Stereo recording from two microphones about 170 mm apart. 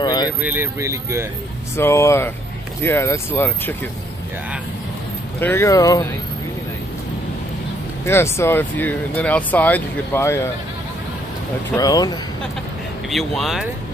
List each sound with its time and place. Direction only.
0.0 s vehicle: 25° left (ahead or behind)
0.4 s speech: 10° right (ahead or behind)
1.8 s speech: 15° left (ahead or behind)
5.4 s speech: 15° left (ahead or behind)
8.0 s speech: 15° left (ahead or behind)
11.7 s speech: 20° left (ahead or behind)
13.1 s speech: centre (ahead or behind)